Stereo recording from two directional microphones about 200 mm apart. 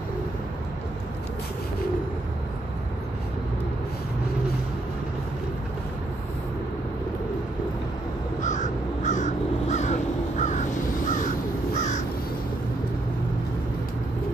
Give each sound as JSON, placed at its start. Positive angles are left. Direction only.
{"t": 8.4, "sound": "crow", "side_deg": 40}